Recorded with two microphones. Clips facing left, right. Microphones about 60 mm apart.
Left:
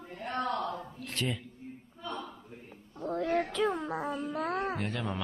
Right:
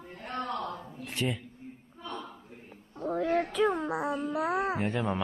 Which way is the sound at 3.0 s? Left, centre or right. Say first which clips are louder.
Right 2 dB; centre.